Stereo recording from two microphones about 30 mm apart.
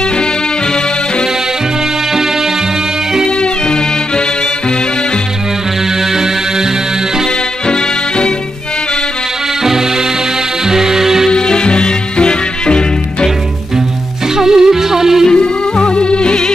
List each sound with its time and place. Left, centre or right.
3.3 s music: left
5.9 s music: centre
7.6 s music: left
9.6 s music: centre
11.3 s music: left
14.3 s music: centre
15.3 s music: left